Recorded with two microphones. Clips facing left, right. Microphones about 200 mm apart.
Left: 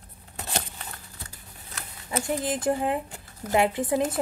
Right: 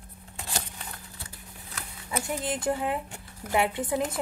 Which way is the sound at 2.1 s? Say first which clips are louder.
Left 3 dB; 25° left (ahead or behind).